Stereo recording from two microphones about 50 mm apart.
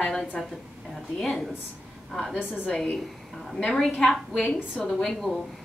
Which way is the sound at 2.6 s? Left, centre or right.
Left.